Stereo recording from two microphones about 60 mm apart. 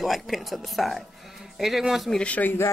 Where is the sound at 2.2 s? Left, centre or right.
Left.